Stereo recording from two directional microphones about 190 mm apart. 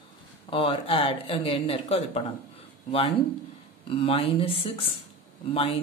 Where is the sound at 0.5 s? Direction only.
25° left (ahead or behind).